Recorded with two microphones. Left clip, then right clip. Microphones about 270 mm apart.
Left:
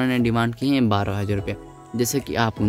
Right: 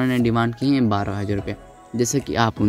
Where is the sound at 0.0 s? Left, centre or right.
Centre.